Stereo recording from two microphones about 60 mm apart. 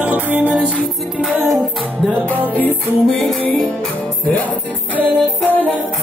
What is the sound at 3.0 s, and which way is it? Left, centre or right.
Music, centre.